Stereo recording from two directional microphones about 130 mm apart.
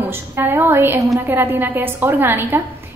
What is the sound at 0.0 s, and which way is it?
A woman's voice, 15° right (ahead or behind).